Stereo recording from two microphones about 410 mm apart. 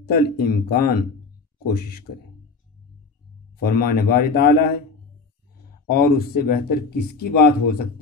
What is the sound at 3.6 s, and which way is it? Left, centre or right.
Speech, left.